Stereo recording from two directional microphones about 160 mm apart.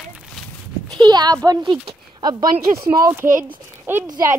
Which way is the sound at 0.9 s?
25° right (ahead or behind).